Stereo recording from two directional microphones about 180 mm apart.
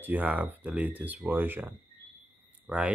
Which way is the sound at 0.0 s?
10° right (ahead or behind).